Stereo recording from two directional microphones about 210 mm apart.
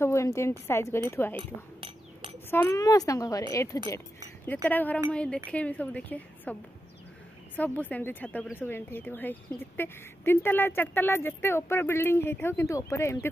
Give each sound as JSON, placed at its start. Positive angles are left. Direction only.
{"t": 0.0, "sound": "speech", "side_deg": 15}
{"t": 1.3, "sound": "speech", "side_deg": -25}
{"t": 2.5, "sound": "speech", "side_deg": 15}
{"t": 7.5, "sound": "speech", "side_deg": 5}